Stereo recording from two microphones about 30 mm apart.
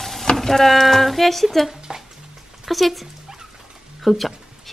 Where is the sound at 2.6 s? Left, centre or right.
Centre.